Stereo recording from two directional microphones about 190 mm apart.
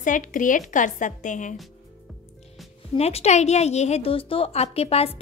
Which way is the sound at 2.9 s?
35° left (ahead or behind).